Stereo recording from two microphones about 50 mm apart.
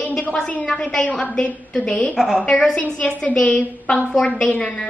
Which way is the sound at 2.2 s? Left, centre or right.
Centre.